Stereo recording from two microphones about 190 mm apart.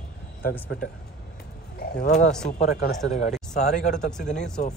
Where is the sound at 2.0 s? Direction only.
40° left (ahead or behind).